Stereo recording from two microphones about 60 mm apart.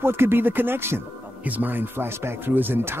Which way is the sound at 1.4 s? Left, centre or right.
Right.